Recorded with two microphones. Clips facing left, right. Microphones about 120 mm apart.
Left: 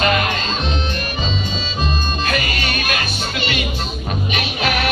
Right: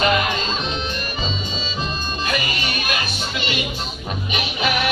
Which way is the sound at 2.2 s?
20° right (ahead or behind).